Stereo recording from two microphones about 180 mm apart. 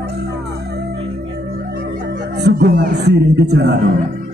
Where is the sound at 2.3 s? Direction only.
70° right (ahead or behind).